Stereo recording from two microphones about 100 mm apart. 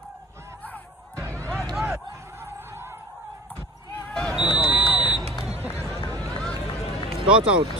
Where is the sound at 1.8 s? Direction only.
25° right (ahead or behind).